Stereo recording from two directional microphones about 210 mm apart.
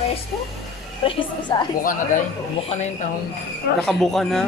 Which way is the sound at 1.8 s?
40° left (ahead or behind).